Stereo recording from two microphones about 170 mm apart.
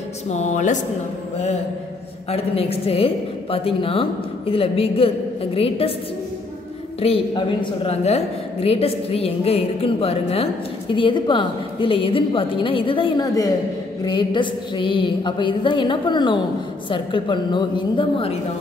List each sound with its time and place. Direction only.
0.3 s speech: 45° left (ahead or behind)
2.3 s a man's voice: 35° left (ahead or behind)
7.0 s a man's voice: 30° left (ahead or behind)